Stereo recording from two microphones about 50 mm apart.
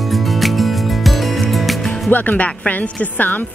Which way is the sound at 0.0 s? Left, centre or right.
Centre.